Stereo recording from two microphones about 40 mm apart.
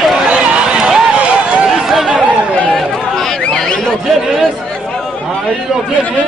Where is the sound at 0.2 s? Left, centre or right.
Right.